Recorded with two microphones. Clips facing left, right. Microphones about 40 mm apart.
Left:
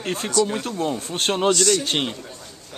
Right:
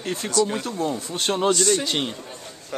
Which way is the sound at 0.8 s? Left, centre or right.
Left.